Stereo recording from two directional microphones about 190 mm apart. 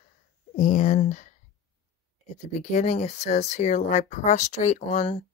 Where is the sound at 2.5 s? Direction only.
35° left (ahead or behind).